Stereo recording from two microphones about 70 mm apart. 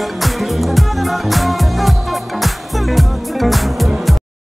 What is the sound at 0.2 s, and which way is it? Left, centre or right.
Music, centre.